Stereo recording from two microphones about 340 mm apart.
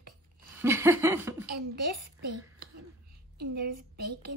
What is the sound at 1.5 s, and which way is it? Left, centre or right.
A child's voice, right.